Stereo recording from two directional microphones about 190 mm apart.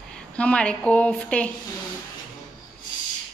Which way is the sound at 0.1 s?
5° left (ahead or behind).